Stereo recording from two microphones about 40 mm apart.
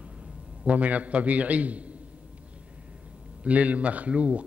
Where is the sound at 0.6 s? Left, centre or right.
Right.